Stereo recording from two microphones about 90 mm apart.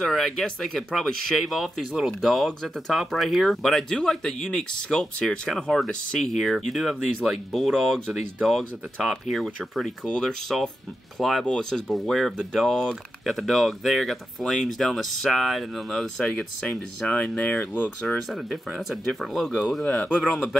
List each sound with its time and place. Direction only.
0.0 s speech: 5° left (ahead or behind); by 17.9 s 20° left (ahead or behind)
18.0 s speech: 5° left (ahead or behind)
19.8 s speech: 15° left (ahead or behind)
20.2 s speech: centre (ahead or behind)